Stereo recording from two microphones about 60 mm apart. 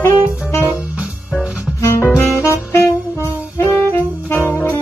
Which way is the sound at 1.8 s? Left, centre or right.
Left.